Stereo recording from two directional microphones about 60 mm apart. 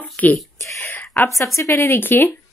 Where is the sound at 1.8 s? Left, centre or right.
Left.